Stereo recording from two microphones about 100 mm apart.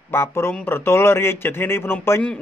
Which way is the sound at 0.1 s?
25° left (ahead or behind).